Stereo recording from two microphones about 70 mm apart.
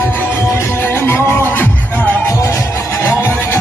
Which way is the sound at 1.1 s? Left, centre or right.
Left.